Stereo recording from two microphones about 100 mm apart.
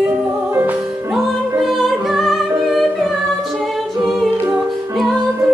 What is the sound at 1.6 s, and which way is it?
Music, centre (ahead or behind).